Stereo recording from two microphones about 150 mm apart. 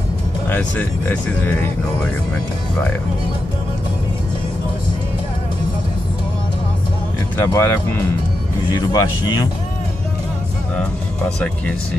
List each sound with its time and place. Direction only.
0.5 s speech: 10° left (ahead or behind)
7.3 s speech: 20° left (ahead or behind)
10.8 s speech: 5° left (ahead or behind)